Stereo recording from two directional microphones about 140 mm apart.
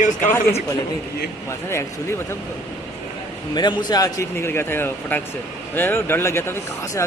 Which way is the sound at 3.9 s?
25° left (ahead or behind).